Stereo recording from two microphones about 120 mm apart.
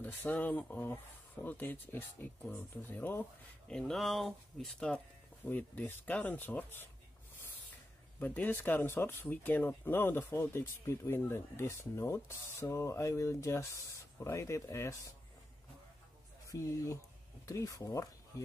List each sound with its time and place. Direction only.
0.0 s speech: 15° left (ahead or behind)
8.2 s speech: 15° left (ahead or behind)
16.4 s speech: 25° left (ahead or behind)